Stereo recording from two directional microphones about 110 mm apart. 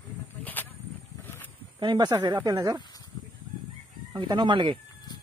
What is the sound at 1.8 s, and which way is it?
Speech, 45° right (ahead or behind).